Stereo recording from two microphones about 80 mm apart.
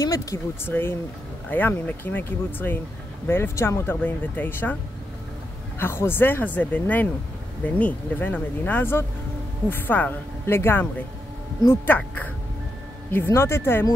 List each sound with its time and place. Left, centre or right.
0.0 s speech: left
0.7 s speech: left
5.8 s speech: left
13.1 s speech: left